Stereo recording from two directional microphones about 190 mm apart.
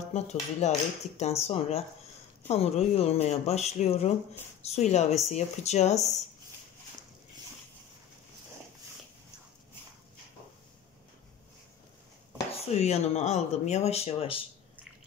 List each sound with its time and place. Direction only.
0.1 s speech: 35° left (ahead or behind)
12.7 s speech: 35° left (ahead or behind)